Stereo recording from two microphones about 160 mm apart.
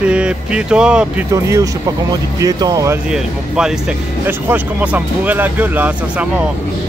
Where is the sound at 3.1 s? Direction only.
5° right (ahead or behind).